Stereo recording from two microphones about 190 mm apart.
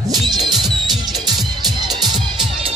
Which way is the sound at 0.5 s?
Centre (ahead or behind).